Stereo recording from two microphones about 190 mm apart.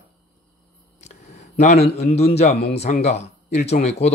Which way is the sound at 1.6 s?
35° left (ahead or behind).